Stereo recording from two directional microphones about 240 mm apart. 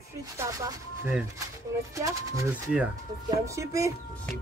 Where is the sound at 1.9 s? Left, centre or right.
Centre.